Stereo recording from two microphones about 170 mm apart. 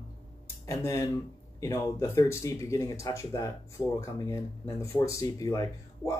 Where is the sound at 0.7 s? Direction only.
20° left (ahead or behind).